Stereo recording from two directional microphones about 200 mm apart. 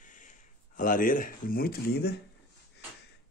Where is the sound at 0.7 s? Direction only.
45° left (ahead or behind).